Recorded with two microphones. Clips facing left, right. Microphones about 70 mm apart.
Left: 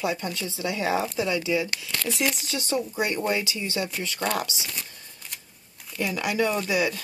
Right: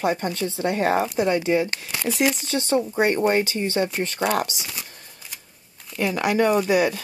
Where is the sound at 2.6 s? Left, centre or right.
Right.